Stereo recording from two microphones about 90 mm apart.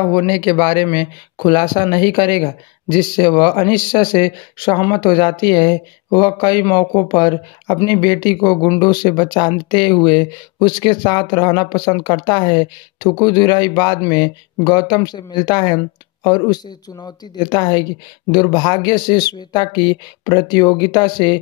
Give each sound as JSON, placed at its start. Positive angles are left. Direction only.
{"t": 0.0, "sound": "speech", "side_deg": 50}